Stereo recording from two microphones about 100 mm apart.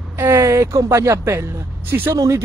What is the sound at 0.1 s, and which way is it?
Speech, 25° right (ahead or behind).